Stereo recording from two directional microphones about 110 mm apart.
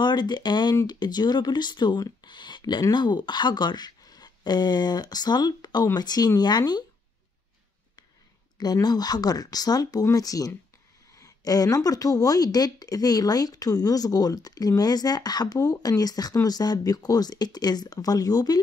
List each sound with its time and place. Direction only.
0.0 s a woman's voice: 40° left (ahead or behind)
8.5 s a woman's voice: 35° left (ahead or behind)